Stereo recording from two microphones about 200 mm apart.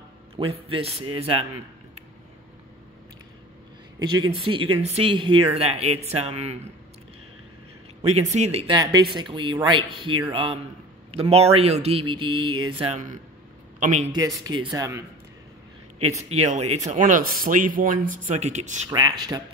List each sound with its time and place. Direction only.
0.4 s speech: 25° right (ahead or behind)
4.0 s speech: 20° right (ahead or behind)
8.0 s speech: 35° right (ahead or behind)
8.7 s a man's voice: 20° right (ahead or behind); by 14.1 s 35° right (ahead or behind)
14.1 s speech: 20° right (ahead or behind)
16.3 s speech: 35° right (ahead or behind)
18.9 s speech: 20° right (ahead or behind)